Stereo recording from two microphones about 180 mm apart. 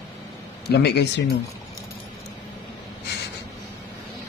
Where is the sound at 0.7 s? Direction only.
65° left (ahead or behind).